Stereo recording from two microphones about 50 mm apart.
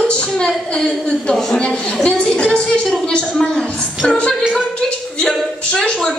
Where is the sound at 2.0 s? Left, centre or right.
Centre.